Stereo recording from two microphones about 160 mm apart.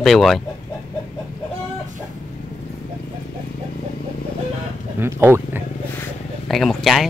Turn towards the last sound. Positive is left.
turn(degrees=0)  # may be behind; listen again after turning